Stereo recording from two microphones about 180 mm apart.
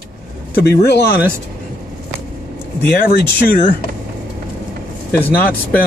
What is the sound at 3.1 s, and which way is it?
Speech, 55° left (ahead or behind).